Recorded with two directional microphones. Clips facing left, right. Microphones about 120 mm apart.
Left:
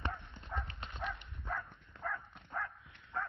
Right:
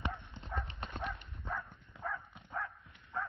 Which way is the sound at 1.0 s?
Centre (ahead or behind).